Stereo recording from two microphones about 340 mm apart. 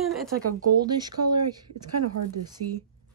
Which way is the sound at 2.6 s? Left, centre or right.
Right.